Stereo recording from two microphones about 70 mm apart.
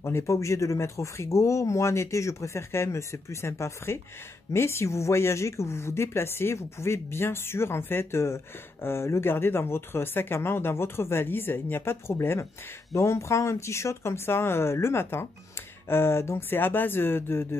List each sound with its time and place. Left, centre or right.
0.0 s speech: left